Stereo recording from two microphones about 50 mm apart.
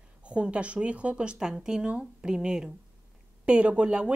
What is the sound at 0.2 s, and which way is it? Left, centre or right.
A woman's voice, right.